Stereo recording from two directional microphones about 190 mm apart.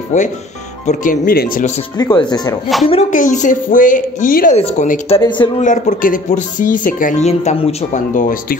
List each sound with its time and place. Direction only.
0.1 s speech: 40° left (ahead or behind)
2.0 s speech: 20° left (ahead or behind)
2.9 s speech: 40° left (ahead or behind)